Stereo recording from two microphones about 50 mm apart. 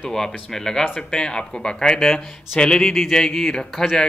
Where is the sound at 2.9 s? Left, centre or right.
Centre.